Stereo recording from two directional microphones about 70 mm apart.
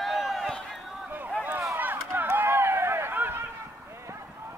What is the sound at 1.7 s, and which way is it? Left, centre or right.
Run, right.